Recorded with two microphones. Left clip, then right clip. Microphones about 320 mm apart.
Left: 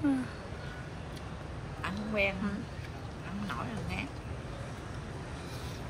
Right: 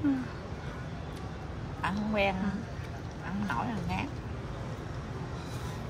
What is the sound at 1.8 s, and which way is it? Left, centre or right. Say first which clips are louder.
Quack: right 2 dB; right.